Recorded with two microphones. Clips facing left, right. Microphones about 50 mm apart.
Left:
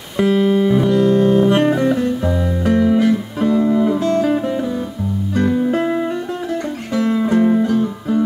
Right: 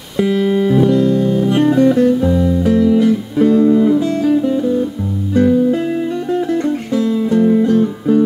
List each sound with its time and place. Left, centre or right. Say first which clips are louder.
0.2 s music: even; centre
1.0 s music: left 1 dB; left
1.9 s music: right 5 dB; centre; by 3.1 s left
3.3 s music: right 8 dB; centre
4.2 s music: right 3 dB; left
5.7 s music: right 1 dB; left
7.5 s music: right 3 dB; centre